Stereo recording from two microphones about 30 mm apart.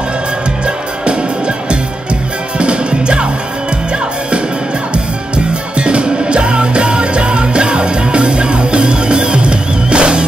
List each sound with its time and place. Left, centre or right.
2.6 s music: right
4.9 s music: right